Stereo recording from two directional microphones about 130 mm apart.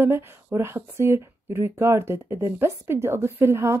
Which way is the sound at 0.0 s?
20° right (ahead or behind).